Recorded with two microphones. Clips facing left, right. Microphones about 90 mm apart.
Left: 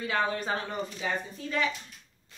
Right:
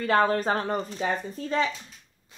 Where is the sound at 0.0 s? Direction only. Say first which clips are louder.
Right 7 dB; 50° right (ahead or behind).